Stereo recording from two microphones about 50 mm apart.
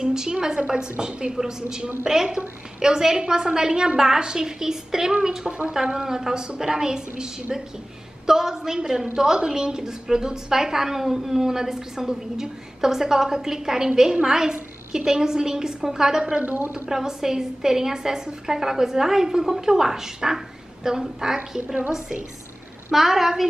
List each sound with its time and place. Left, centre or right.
0.0 s a woman's voice: centre
8.3 s a woman's voice: centre
16.4 s a woman's voice: right
16.9 s a woman's voice: centre
22.8 s a woman's voice: centre